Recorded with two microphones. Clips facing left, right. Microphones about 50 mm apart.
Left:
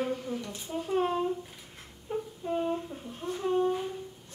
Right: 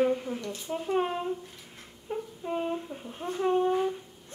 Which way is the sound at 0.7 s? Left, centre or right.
Centre.